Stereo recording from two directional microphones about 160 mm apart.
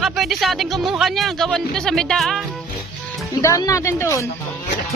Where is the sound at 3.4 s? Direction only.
20° left (ahead or behind).